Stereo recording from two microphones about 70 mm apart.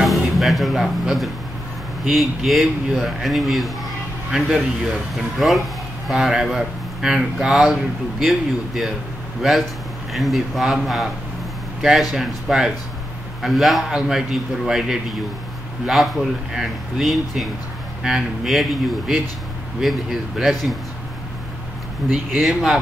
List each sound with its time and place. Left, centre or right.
0.0 s speech: centre
22.1 s speech: centre